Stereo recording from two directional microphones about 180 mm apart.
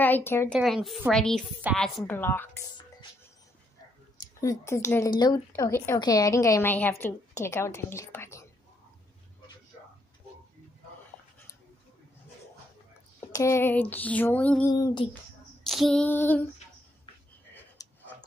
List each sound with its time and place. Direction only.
0.0 s speech: 10° left (ahead or behind)
0.6 s a woman's voice: centre (ahead or behind)
4.4 s a woman's voice: 15° left (ahead or behind)
13.3 s a woman's voice: 15° left (ahead or behind)
14.7 s a sound: 20° left (ahead or behind)
15.6 s female singing: centre (ahead or behind)
17.8 s a sound: 20° left (ahead or behind)